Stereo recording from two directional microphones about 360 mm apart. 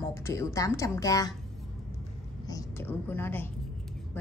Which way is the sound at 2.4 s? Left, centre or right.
Centre.